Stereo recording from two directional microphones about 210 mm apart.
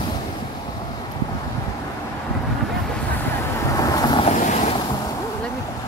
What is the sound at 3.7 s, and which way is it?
Vehicle, 15° left (ahead or behind).